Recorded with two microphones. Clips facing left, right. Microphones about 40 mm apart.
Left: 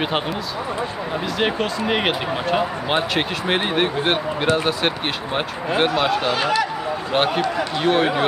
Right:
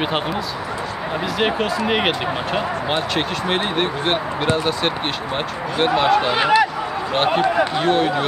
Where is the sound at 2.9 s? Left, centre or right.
Centre.